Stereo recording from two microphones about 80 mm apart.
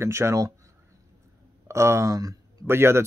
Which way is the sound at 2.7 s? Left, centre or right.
Right.